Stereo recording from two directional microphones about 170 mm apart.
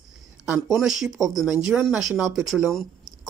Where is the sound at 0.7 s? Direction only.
5° right (ahead or behind).